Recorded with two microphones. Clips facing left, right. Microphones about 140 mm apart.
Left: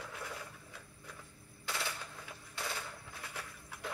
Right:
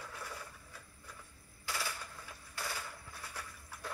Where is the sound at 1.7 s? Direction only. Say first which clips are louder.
Even; 25° left (ahead or behind).